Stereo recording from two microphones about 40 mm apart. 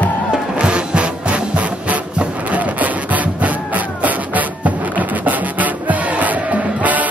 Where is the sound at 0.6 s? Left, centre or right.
Right.